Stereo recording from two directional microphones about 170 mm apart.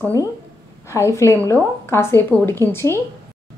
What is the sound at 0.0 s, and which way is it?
A woman's voice, 15° left (ahead or behind).